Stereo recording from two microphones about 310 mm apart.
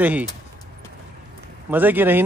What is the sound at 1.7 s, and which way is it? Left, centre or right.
Speech, centre.